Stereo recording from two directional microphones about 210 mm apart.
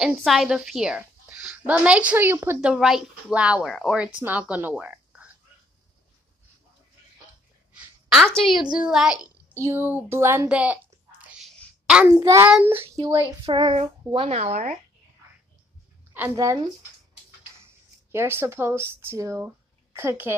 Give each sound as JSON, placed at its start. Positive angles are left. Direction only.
{"t": 0.0, "sound": "a woman's voice", "side_deg": 0}
{"t": 7.7, "sound": "a sound", "side_deg": 0}
{"t": 8.7, "sound": "a woman's voice", "side_deg": -5}
{"t": 9.7, "sound": "a sound", "side_deg": -10}
{"t": 12.1, "sound": "a woman's voice", "side_deg": -15}
{"t": 13.5, "sound": "a child's voice", "side_deg": -25}
{"t": 16.1, "sound": "a woman's voice", "side_deg": -10}
{"t": 18.1, "sound": "speech", "side_deg": -10}